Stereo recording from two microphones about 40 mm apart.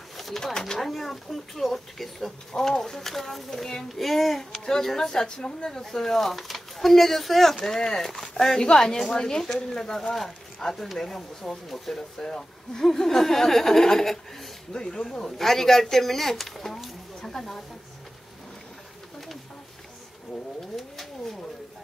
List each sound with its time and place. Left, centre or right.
0.2 s speech: centre
0.7 s speech: centre
7.6 s speech: centre
12.2 s speech: centre
14.7 s speech: centre
20.6 s a sound: centre